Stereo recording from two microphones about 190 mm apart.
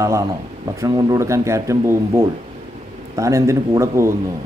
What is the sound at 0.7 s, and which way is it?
Speech, 20° right (ahead or behind).